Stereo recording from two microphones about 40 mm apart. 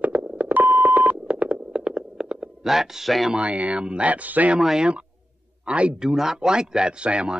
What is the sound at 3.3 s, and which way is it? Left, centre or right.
Speech, right.